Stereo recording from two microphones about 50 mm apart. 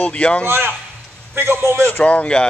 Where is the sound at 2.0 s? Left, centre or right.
Left.